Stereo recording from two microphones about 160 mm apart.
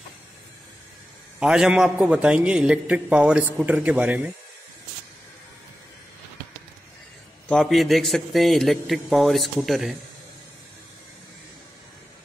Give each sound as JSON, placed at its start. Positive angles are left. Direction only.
{"t": 1.4, "sound": "a man's voice", "side_deg": -5}
{"t": 7.4, "sound": "a man's voice", "side_deg": 0}